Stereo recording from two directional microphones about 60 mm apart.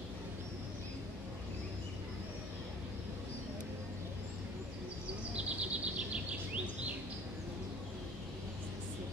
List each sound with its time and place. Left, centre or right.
5.3 s bird: right